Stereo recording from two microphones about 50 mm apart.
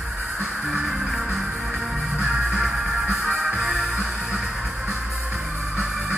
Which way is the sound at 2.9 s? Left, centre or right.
Right.